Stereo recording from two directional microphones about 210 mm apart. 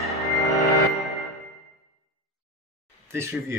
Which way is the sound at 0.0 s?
Centre (ahead or behind).